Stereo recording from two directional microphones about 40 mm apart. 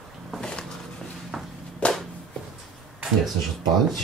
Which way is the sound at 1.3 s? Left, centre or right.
Centre.